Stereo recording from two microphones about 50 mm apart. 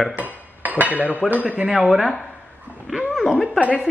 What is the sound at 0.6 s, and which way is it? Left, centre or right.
Cutlery, right.